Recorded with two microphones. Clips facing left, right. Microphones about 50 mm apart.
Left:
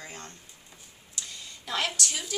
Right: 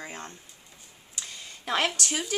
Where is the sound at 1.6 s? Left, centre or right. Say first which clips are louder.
Right 4 dB; right.